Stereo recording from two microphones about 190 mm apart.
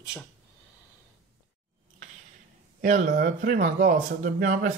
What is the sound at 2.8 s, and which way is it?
Speech, 40° right (ahead or behind).